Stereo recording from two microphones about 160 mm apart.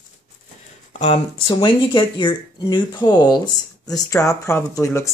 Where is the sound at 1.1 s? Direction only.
30° left (ahead or behind).